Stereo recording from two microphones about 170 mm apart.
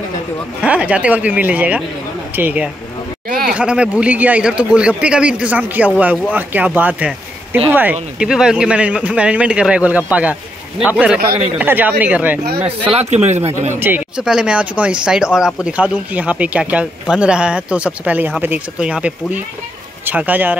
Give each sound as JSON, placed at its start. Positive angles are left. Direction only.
{"t": 0.6, "sound": "speech", "side_deg": -10}
{"t": 3.3, "sound": "a sound", "side_deg": -60}
{"t": 3.5, "sound": "a man's voice", "side_deg": -5}
{"t": 12.6, "sound": "speech", "side_deg": -35}
{"t": 13.7, "sound": "speech", "side_deg": -10}